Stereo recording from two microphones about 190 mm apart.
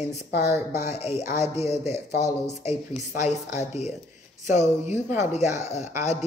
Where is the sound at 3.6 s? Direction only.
35° left (ahead or behind).